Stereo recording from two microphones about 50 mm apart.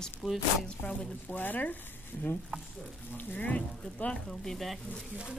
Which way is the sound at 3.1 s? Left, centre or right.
Left.